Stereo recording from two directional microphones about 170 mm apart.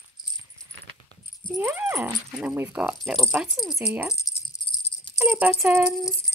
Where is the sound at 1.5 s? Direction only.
10° right (ahead or behind).